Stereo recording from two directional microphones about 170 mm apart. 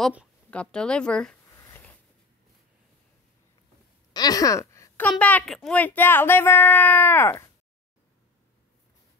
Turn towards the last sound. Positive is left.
turn(degrees=15)  # may be behind; listen again after turning